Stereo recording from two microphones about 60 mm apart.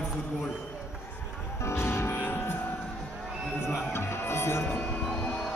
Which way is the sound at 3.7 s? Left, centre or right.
Left.